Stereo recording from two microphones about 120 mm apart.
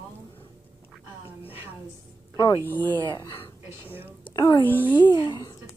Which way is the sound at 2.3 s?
30° left (ahead or behind).